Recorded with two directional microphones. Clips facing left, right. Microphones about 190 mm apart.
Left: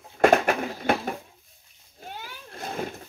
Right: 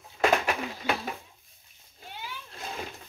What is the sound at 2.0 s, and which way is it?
Splash, 45° left (ahead or behind).